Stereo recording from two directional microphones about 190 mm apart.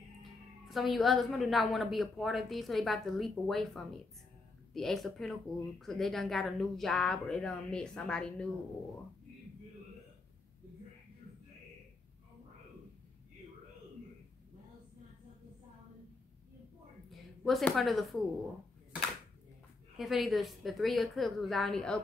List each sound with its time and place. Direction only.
0.7 s speech: centre (ahead or behind)
17.1 s a sound: centre (ahead or behind)
20.0 s speech: centre (ahead or behind)